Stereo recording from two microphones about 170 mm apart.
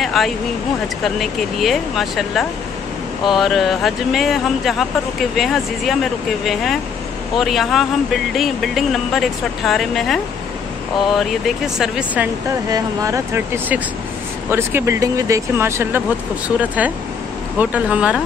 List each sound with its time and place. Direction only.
0.0 s speech: centre (ahead or behind)
12.6 s speech: 20° right (ahead or behind)